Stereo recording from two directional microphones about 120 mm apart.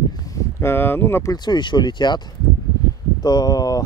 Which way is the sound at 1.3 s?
35° left (ahead or behind).